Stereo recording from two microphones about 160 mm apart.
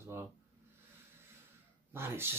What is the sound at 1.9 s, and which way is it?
Speech, 15° right (ahead or behind).